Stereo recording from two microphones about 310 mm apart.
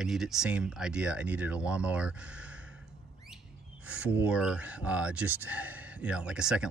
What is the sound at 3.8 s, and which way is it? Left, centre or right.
Speech, centre.